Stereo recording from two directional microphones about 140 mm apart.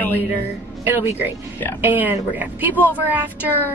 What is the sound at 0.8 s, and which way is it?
A woman's voice, 15° right (ahead or behind).